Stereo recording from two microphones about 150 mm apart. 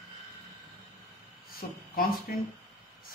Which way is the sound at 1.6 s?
70° left (ahead or behind).